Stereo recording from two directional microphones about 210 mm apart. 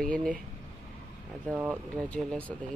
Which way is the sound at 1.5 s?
Centre (ahead or behind).